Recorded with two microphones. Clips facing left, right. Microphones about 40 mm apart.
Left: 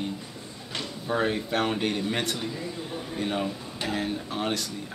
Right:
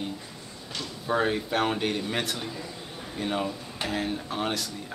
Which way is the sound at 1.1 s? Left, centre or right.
Centre.